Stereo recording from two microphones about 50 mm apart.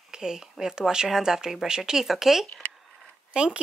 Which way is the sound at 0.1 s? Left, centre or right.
Centre.